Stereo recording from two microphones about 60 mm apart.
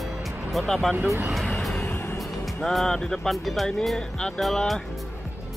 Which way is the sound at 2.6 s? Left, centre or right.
Centre.